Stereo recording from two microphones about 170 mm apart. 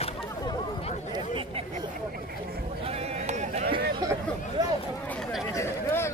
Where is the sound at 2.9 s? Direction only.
40° right (ahead or behind).